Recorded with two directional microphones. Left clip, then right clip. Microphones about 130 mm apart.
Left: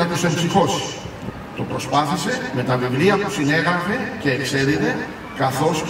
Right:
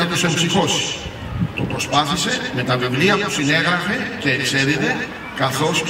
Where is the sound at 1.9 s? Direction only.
20° right (ahead or behind).